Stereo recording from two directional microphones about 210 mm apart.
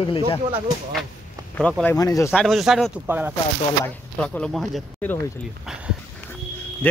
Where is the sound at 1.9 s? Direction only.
15° left (ahead or behind).